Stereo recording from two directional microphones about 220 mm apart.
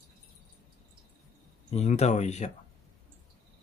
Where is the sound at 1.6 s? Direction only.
30° left (ahead or behind).